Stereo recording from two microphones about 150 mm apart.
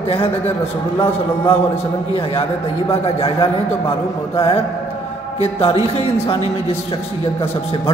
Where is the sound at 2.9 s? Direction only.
40° left (ahead or behind).